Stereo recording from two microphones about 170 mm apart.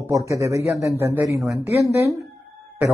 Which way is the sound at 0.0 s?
20° right (ahead or behind).